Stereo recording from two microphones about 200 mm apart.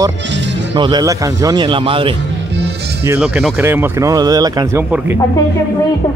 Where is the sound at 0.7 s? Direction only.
20° right (ahead or behind).